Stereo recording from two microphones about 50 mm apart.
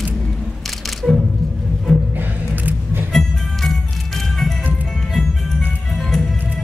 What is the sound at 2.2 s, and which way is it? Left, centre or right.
Music, right.